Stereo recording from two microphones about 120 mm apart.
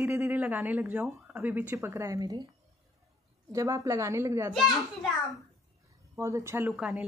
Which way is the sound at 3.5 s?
25° right (ahead or behind).